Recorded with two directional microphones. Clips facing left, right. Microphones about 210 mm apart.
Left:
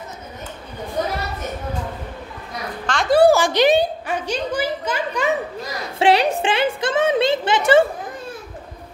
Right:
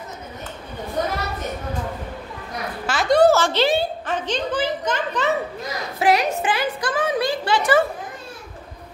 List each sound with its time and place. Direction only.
2.9 s a sound: 5° right (ahead or behind)
3.2 s a child's voice: 15° left (ahead or behind)
5.9 s a woman's voice: 30° left (ahead or behind)